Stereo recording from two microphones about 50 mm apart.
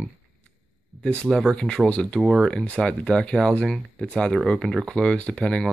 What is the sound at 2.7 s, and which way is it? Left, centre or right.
Speech, centre.